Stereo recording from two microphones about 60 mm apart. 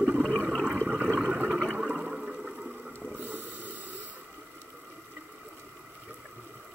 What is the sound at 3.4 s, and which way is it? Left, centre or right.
Snort, left.